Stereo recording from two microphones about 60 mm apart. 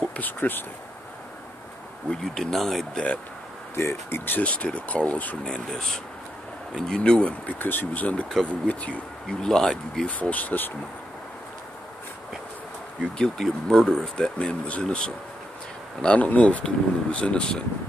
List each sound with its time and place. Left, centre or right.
0.1 s speech: left
2.0 s speech: centre
3.7 s speech: left
4.4 s speech: left
5.4 s speech: centre
7.0 s speech: centre
9.3 s speech: centre
10.0 s speech: left
13.2 s speech: centre